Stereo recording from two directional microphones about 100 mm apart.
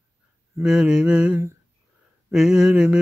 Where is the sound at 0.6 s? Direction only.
10° right (ahead or behind).